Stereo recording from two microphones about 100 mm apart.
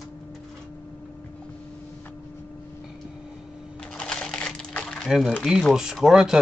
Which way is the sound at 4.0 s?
10° left (ahead or behind).